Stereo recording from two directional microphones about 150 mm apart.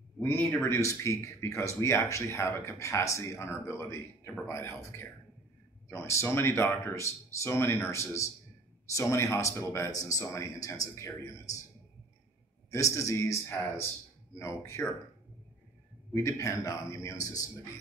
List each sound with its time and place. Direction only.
0.2 s speech: 15° left (ahead or behind)
5.9 s speech: 15° left (ahead or behind)
12.7 s speech: 20° left (ahead or behind)
14.4 s speech: 20° left (ahead or behind)
16.1 s speech: 20° left (ahead or behind)